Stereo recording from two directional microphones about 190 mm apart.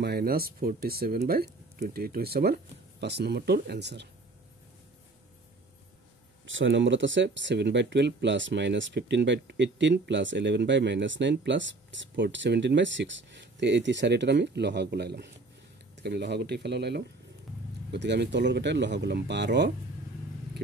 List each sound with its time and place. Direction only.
0.0 s speech: 55° right (ahead or behind)
6.4 s speech: 85° right; by 19.7 s 65° right (ahead or behind)